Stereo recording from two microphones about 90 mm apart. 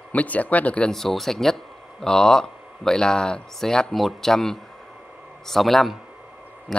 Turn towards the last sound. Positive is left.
turn(degrees=0)  # may be behind; listen again after turning